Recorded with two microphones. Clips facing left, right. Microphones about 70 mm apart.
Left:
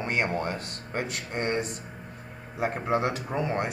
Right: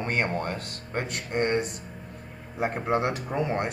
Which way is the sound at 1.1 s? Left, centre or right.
Right.